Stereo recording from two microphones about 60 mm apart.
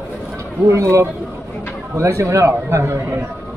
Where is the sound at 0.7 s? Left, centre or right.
Right.